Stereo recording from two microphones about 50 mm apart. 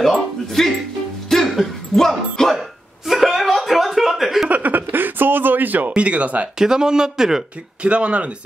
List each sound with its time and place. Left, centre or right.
0.0 s music: centre
1.3 s a sound: centre
3.1 s chuckle: centre
4.5 s a sound: right
6.6 s a man's voice: centre
7.8 s speech: right